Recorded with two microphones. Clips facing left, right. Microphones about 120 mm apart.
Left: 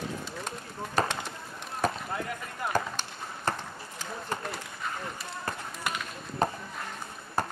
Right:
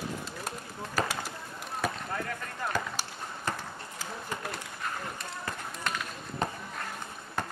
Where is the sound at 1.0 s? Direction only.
35° left (ahead or behind).